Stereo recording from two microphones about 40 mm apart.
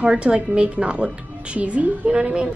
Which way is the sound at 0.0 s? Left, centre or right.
Right.